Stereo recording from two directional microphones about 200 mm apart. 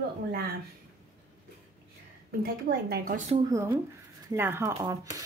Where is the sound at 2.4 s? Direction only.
50° right (ahead or behind).